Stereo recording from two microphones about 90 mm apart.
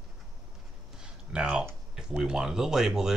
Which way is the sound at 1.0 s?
10° right (ahead or behind).